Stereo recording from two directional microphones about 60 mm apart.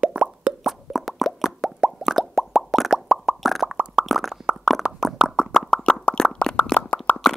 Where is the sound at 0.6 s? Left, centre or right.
Centre.